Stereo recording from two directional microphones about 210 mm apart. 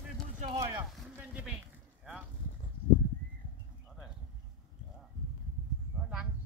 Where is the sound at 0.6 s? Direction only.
15° right (ahead or behind).